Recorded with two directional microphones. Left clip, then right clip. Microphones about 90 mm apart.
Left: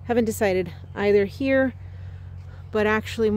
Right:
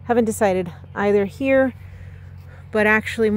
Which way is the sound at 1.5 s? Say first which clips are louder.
Right 6 dB; 20° left (ahead or behind).